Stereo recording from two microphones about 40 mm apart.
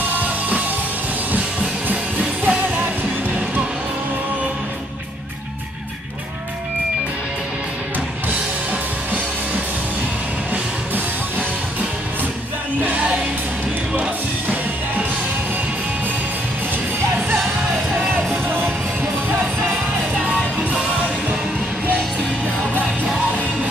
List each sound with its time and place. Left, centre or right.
0.1 s music: right
1.9 s music: right
12.8 s music: right